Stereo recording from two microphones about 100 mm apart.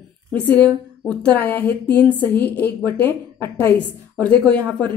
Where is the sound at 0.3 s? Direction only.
15° left (ahead or behind).